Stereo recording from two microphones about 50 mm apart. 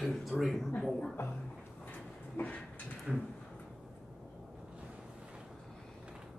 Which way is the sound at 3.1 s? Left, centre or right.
Centre.